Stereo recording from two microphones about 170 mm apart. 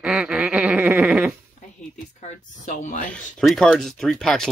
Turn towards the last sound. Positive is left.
turn(degrees=5)  # may be behind; listen again after turning